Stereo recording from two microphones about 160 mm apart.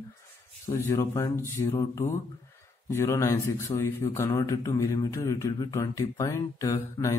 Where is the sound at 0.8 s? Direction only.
20° left (ahead or behind).